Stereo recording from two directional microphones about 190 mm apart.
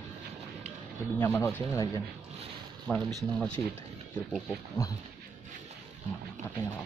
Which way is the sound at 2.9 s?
5° left (ahead or behind).